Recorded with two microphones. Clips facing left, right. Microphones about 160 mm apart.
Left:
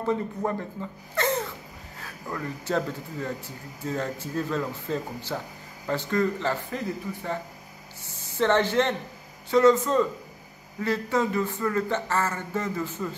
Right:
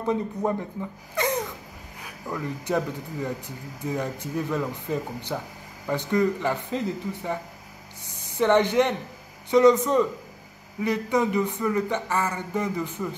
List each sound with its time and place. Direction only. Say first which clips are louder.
0.0 s speech: right 1 dB; 15° right (ahead or behind)